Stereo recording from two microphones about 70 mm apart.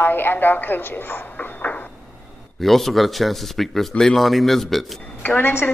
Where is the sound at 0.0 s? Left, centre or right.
Left.